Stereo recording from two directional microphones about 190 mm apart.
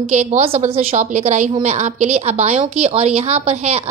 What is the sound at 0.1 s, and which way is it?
A woman's voice, 35° right (ahead or behind).